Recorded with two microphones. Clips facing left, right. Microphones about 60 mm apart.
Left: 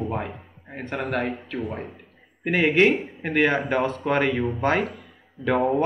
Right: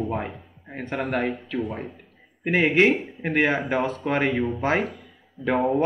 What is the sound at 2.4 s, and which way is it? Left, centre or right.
Speech, centre.